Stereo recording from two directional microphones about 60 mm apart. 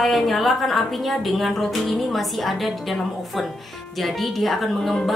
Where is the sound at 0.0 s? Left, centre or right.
Centre.